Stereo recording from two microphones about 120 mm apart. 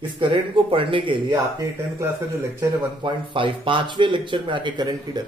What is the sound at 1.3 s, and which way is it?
Speech, 25° right (ahead or behind).